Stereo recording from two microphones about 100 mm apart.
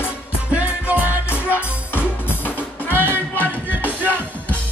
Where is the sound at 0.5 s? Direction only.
15° right (ahead or behind).